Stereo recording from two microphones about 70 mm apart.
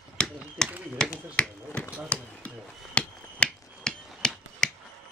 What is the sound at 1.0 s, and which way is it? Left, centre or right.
Finger snapping, centre.